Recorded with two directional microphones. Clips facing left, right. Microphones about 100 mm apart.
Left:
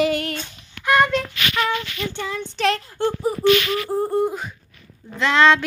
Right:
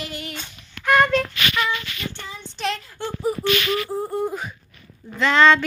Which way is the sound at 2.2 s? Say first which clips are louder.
Left 7 dB; 65° left (ahead or behind).